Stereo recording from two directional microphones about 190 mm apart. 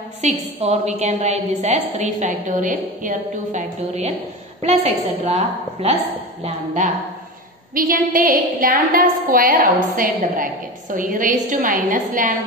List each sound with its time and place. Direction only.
0.2 s a woman's voice: 35° right (ahead or behind)